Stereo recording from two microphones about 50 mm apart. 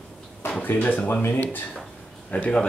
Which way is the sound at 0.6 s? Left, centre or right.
Left.